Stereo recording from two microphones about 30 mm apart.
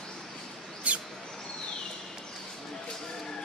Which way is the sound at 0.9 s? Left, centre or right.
Right.